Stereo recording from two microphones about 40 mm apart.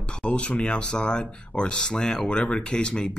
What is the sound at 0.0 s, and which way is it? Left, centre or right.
Speech, left.